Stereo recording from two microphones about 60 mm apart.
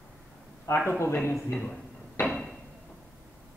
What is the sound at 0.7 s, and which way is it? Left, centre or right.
Speech, left.